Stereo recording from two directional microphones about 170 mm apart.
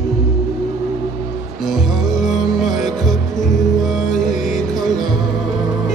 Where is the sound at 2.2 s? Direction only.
Centre (ahead or behind).